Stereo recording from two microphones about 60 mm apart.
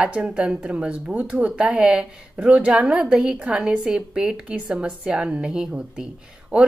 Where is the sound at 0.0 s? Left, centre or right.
Centre.